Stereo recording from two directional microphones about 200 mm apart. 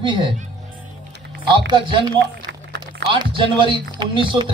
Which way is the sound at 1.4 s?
25° right (ahead or behind).